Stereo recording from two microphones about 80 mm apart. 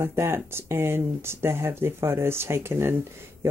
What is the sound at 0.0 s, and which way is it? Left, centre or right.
Speech, right.